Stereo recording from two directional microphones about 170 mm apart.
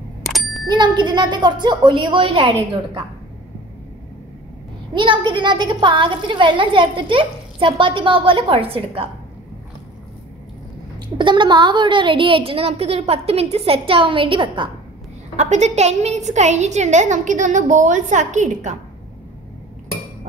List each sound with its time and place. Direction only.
0.2 s bicycle bell: centre (ahead or behind)
0.7 s a woman's voice: 25° right (ahead or behind)
4.9 s a woman's voice: 30° right (ahead or behind)
11.1 s a woman's voice: 30° right (ahead or behind)
15.3 s a woman's voice: 45° right (ahead or behind)